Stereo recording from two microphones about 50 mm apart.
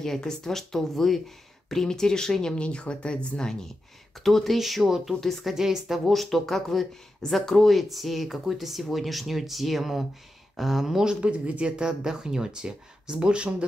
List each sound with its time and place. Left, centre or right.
0.0 s speech: centre
4.2 s speech: centre
5.5 s speech: centre
6.0 s speech: centre
11.1 s speech: right